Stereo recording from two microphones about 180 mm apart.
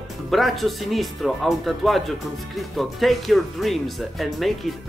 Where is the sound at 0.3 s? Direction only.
Centre (ahead or behind).